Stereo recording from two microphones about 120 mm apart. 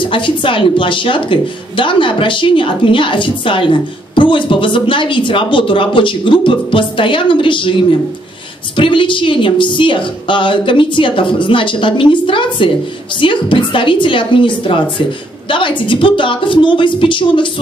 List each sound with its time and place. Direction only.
0.0 s a woman's voice: 45° left (ahead or behind)
8.7 s a woman's voice: 45° left (ahead or behind)